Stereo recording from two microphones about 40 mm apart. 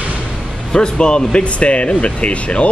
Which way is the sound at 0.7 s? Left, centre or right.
Centre.